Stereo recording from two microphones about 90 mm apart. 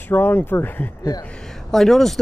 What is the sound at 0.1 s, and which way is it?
Speech, 20° left (ahead or behind).